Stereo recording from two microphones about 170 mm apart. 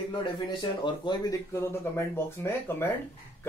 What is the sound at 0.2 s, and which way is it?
Speech, 30° left (ahead or behind).